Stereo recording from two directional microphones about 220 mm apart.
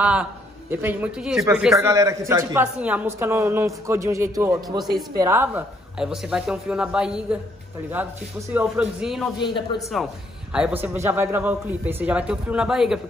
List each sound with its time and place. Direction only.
0.0 s a man's voice: 5° right (ahead or behind)
9.4 s speech: 20° left (ahead or behind)
9.8 s a woman's voice: centre (ahead or behind)